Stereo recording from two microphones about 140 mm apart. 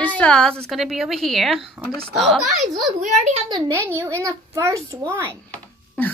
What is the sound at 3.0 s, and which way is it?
Speech, 55° right (ahead or behind).